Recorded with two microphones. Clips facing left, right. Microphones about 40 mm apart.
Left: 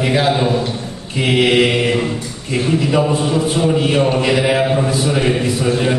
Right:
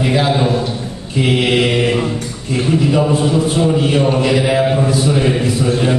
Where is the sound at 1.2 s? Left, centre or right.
Left.